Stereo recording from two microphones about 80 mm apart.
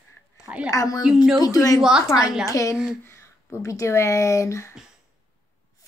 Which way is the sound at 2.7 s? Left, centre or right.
Centre.